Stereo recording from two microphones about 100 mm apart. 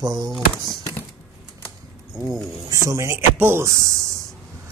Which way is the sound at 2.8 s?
30° right (ahead or behind).